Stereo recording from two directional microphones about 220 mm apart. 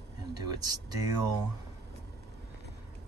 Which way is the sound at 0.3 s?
15° right (ahead or behind).